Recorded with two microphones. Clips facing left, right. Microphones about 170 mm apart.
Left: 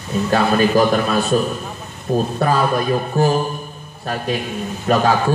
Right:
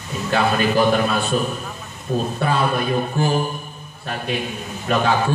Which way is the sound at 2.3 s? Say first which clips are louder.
Left 2 dB; 40° left (ahead or behind).